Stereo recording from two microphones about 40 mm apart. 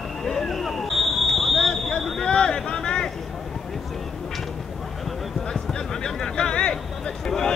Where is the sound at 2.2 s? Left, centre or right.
Centre.